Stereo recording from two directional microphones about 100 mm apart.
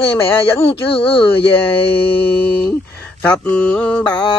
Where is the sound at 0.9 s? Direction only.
70° left (ahead or behind).